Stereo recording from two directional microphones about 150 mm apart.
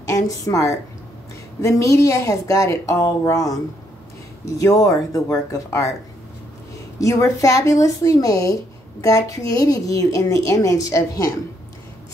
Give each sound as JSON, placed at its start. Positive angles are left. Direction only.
{"t": 0.0, "sound": "a woman's voice", "side_deg": 20}
{"t": 4.6, "sound": "a woman's voice", "side_deg": 25}
{"t": 7.0, "sound": "a woman's voice", "side_deg": 20}